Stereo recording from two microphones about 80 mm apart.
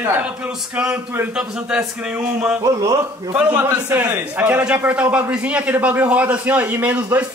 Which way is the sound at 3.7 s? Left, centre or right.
Centre.